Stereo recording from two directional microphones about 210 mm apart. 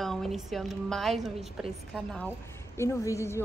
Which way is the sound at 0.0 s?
Centre (ahead or behind).